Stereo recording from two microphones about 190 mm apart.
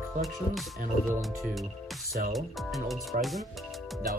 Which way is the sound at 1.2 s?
Centre (ahead or behind).